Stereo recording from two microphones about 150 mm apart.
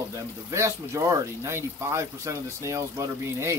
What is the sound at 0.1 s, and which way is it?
Speech, 20° right (ahead or behind).